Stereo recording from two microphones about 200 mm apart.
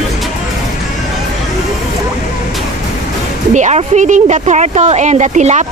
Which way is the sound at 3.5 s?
35° right (ahead or behind).